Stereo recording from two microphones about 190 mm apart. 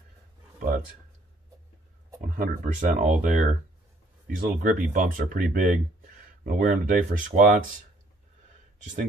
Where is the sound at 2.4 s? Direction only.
45° right (ahead or behind).